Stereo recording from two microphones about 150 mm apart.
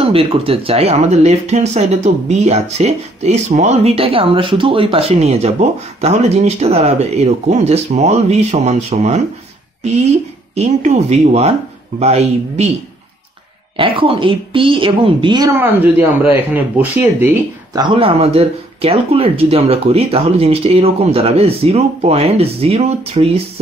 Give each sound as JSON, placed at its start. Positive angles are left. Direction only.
{"t": 0.0, "sound": "speech", "side_deg": -40}
{"t": 10.5, "sound": "speech", "side_deg": -45}
{"t": 13.7, "sound": "speech", "side_deg": -35}
{"t": 15.5, "sound": "speech", "side_deg": -15}
{"t": 17.7, "sound": "speech", "side_deg": -35}